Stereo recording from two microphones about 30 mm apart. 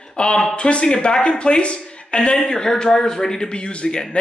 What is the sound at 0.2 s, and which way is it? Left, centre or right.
Speech, left.